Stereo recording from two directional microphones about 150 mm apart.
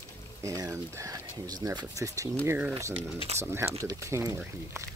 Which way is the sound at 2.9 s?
45° right (ahead or behind).